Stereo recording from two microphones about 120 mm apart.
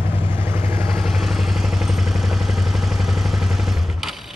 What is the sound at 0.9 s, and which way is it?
Vehicle, centre (ahead or behind).